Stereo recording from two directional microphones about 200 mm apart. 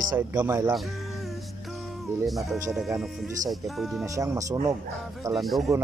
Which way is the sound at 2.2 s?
Centre (ahead or behind).